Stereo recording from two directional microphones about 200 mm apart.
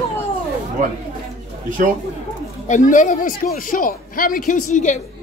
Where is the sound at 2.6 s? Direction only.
40° left (ahead or behind).